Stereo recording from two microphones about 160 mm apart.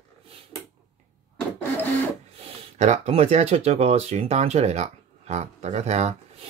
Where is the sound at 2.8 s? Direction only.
45° right (ahead or behind).